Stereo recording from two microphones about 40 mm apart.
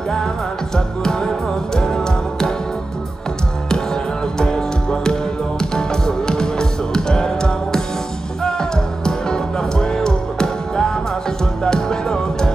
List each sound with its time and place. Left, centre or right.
0.7 s music: centre
3.7 s music: centre